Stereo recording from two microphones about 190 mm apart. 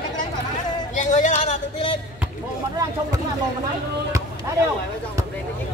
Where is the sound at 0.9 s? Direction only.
40° left (ahead or behind).